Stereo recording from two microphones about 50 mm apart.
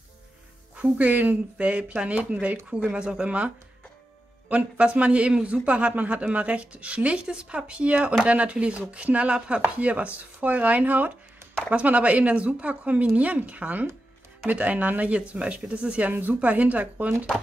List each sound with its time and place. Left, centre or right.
0.7 s a man's voice: right
16.1 s speech: right